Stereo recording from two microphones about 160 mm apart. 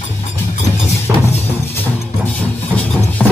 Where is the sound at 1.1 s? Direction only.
15° right (ahead or behind).